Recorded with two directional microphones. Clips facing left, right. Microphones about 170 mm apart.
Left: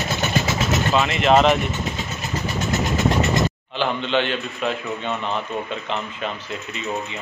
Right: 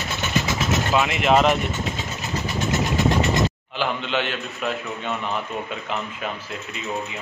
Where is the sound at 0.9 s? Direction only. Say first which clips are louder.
Left 2 dB; 5° right (ahead or behind).